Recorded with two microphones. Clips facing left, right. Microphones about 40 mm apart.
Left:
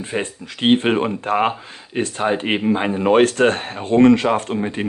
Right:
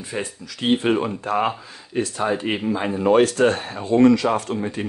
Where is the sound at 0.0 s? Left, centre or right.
Left.